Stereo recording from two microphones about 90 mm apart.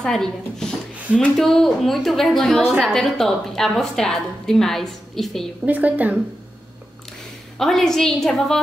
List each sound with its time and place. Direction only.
0.0 s a woman's voice: 5° left (ahead or behind)
5.7 s a woman's voice: 20° right (ahead or behind)
7.5 s a woman's voice: 5° left (ahead or behind)